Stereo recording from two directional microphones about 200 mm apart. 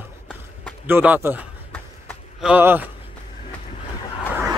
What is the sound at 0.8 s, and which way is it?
Speech, 10° right (ahead or behind).